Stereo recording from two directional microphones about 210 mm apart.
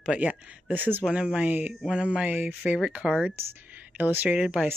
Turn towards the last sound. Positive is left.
turn(degrees=-5)  # may be behind; listen again after turning